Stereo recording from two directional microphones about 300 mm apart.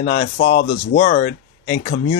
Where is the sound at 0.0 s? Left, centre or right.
Left.